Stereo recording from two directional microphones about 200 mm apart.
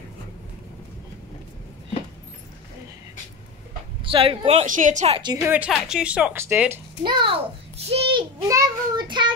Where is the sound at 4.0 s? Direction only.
25° right (ahead or behind).